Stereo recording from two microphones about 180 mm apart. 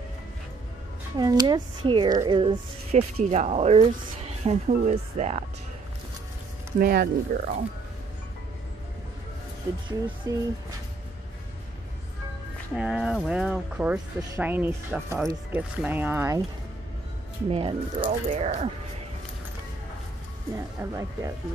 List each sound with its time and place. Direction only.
1.1 s a woman's voice: 25° right (ahead or behind); by 5.4 s 40° right (ahead or behind)
6.8 s speech: 60° right (ahead or behind)
9.8 s a woman's voice: 25° right (ahead or behind)
12.7 s speech: centre (ahead or behind)
17.5 s speech: 30° right (ahead or behind)
18.3 s speech: 40° right (ahead or behind)
20.8 s speech: 15° right (ahead or behind)